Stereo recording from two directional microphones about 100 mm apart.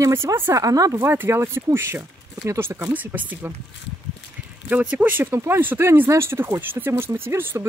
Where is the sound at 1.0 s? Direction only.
25° right (ahead or behind).